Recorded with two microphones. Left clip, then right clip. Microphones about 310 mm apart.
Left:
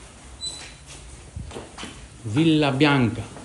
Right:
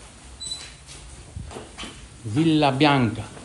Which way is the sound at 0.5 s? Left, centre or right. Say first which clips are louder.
Right 3 dB; centre.